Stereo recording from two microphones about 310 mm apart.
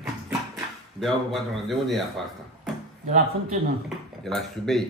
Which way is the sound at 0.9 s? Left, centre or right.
Centre.